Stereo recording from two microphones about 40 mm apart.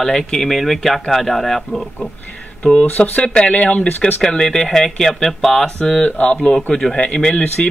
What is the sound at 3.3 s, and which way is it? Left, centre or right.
Speech, left.